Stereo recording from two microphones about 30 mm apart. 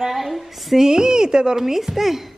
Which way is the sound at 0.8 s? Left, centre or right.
Right.